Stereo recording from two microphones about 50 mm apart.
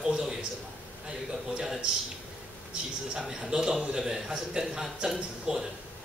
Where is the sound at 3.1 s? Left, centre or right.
Centre.